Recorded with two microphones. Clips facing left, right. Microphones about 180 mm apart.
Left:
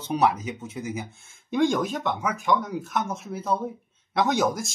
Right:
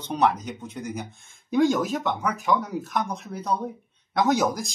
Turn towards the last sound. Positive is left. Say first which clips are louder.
# right 1 dB
turn(degrees=0)  # may be behind; listen again after turning